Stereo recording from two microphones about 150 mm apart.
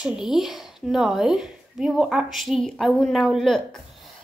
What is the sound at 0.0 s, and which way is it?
A woman's voice, 5° right (ahead or behind).